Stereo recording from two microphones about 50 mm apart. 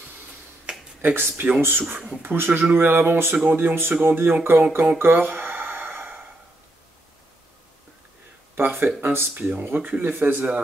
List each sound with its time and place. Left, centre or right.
1.0 s speech: right
2.0 s speech: centre
2.2 s speech: right
5.1 s a sound: right
8.5 s speech: right
9.3 s speech: right